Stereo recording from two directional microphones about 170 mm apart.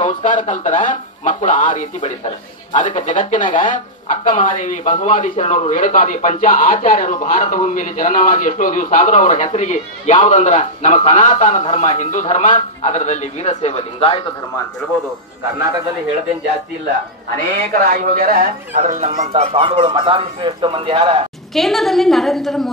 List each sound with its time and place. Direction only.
0.0 s speech: 50° left (ahead or behind)
3.4 s speech: 30° left (ahead or behind)
3.7 s speech: 50° left (ahead or behind)
17.7 s speech: 60° right (ahead or behind); by 21.2 s 30° right (ahead or behind)
21.5 s a woman's voice: centre (ahead or behind)